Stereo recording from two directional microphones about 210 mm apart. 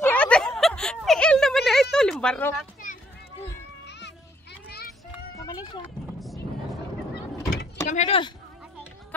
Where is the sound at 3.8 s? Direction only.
55° left (ahead or behind).